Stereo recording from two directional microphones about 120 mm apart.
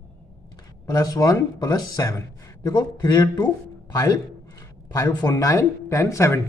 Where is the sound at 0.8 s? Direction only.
30° left (ahead or behind).